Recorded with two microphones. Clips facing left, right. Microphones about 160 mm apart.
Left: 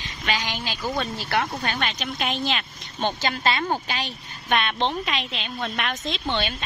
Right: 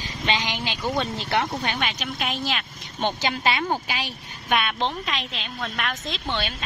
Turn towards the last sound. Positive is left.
turn(degrees=0)  # may be behind; listen again after turning